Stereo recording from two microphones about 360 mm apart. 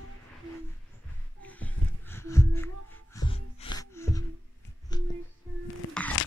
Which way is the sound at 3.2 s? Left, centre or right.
Centre.